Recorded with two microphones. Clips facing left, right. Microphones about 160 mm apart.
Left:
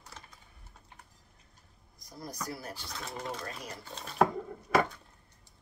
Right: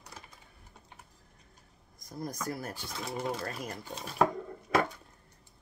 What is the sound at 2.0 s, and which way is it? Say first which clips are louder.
Speech: right 3 dB; 50° right (ahead or behind).